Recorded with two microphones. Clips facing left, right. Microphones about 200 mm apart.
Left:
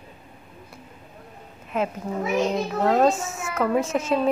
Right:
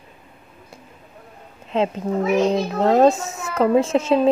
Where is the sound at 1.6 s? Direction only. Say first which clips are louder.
Right 5 dB; 25° right (ahead or behind).